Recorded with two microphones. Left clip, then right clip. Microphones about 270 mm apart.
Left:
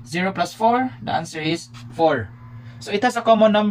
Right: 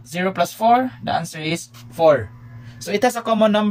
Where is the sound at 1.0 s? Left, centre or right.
Right.